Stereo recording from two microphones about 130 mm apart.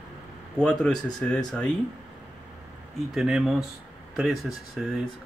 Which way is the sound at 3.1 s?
5° right (ahead or behind).